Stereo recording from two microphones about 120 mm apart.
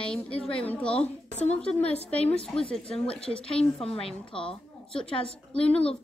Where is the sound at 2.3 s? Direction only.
55° left (ahead or behind).